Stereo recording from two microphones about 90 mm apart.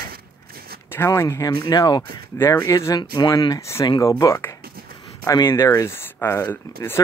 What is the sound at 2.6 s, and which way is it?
Speech, 40° left (ahead or behind).